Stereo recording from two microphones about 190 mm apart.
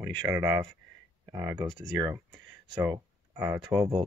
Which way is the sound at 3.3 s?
10° right (ahead or behind).